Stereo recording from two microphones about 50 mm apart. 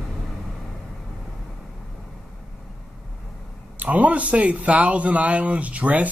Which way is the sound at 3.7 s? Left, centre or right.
Right.